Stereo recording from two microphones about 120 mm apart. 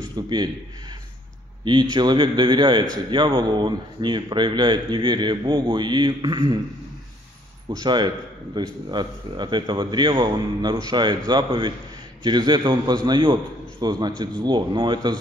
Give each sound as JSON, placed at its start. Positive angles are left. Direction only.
{"t": 0.1, "sound": "a man's voice", "side_deg": -35}
{"t": 1.6, "sound": "a man's voice", "side_deg": -40}
{"t": 7.8, "sound": "a man's voice", "side_deg": -40}